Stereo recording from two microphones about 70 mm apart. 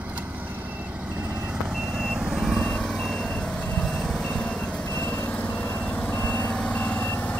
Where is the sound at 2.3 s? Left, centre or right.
Centre.